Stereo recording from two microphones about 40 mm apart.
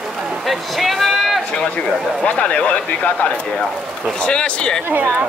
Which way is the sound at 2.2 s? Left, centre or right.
Left.